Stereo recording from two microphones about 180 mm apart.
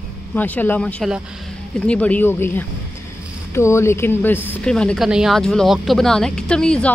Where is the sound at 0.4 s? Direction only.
10° left (ahead or behind).